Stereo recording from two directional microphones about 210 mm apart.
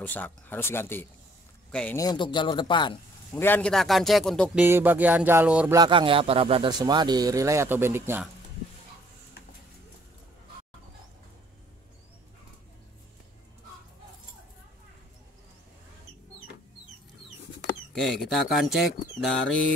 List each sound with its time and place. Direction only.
0.0 s speech: 10° left (ahead or behind)
2.0 s speech: 20° left (ahead or behind)
3.3 s speech: 10° left (ahead or behind)
4.6 s speech: 10° right (ahead or behind)
5.8 s speech: 25° right (ahead or behind)
17.9 s speech: centre (ahead or behind)